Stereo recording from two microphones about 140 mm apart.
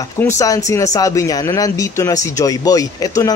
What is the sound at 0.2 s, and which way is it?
Speech, 20° left (ahead or behind).